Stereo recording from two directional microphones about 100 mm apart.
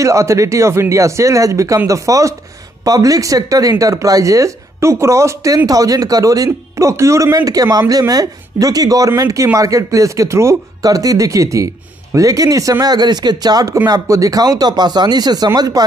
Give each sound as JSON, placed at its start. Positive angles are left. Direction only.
{"t": 0.0, "sound": "speech", "side_deg": -30}